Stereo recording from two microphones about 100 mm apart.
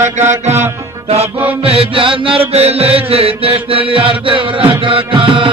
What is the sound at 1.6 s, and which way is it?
Mantra, 70° right (ahead or behind).